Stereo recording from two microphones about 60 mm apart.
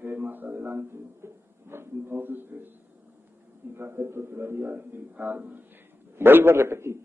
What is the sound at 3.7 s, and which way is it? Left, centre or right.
A man's voice, right.